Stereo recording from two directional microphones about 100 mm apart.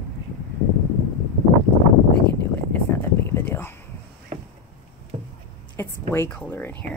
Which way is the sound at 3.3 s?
25° left (ahead or behind).